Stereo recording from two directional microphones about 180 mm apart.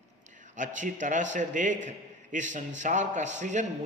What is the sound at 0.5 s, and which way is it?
A man's voice, 45° right (ahead or behind).